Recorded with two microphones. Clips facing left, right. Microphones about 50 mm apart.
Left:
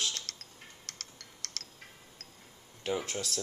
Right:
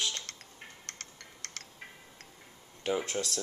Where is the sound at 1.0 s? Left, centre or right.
Right.